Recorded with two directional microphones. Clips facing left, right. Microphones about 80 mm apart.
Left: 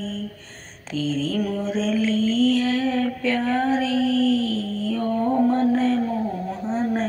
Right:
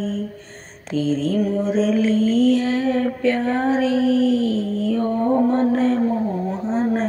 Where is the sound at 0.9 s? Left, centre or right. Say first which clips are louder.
Right 4 dB; right.